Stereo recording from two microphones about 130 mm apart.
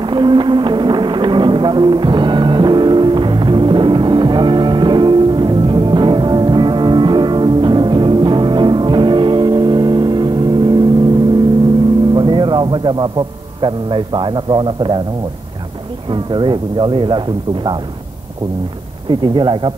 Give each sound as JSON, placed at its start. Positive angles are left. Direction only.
{"t": 0.0, "sound": "a sound", "side_deg": -35}
{"t": 12.1, "sound": "a man's voice", "side_deg": -35}
{"t": 16.1, "sound": "speech", "side_deg": -35}
{"t": 19.0, "sound": "speech", "side_deg": -35}